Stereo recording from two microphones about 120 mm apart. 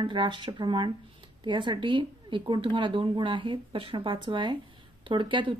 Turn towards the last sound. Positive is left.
turn(degrees=-45)  # may be behind; listen again after turning